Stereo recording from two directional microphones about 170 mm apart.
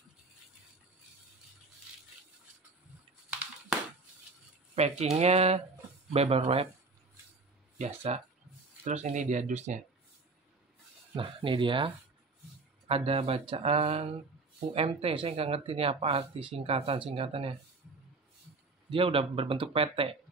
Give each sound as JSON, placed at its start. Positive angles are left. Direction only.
{"t": 4.7, "sound": "speech", "side_deg": -40}
{"t": 7.8, "sound": "speech", "side_deg": -40}
{"t": 11.1, "sound": "speech", "side_deg": -30}
{"t": 18.9, "sound": "speech", "side_deg": -30}